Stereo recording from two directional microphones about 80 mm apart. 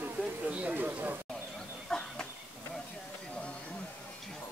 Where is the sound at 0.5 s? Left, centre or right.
Centre.